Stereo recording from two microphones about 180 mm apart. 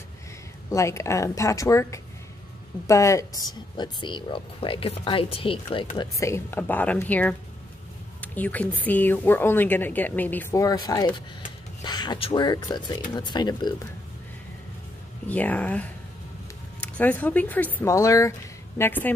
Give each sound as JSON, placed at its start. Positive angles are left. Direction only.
{"t": 0.7, "sound": "speech", "side_deg": 15}
{"t": 5.9, "sound": "speech", "side_deg": 15}
{"t": 15.2, "sound": "speech", "side_deg": 10}